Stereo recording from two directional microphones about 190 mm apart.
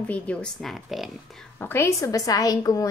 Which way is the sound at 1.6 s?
10° left (ahead or behind).